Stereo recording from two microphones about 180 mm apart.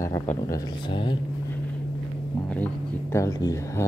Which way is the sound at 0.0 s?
15° left (ahead or behind).